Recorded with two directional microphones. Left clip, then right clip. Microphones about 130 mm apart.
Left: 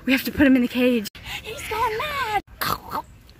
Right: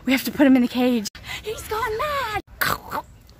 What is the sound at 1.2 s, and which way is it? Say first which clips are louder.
Pig: right 1 dB; 5° right (ahead or behind).